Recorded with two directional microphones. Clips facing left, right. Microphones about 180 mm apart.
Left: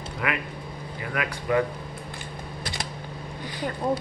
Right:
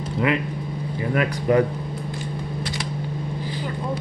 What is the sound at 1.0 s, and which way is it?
Speech, 35° right (ahead or behind).